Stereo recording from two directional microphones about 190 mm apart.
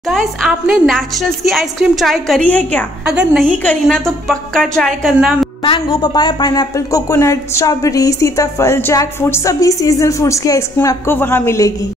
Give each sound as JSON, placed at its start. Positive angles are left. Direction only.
{"t": 0.1, "sound": "a woman's voice", "side_deg": 0}
{"t": 5.6, "sound": "a woman's voice", "side_deg": 25}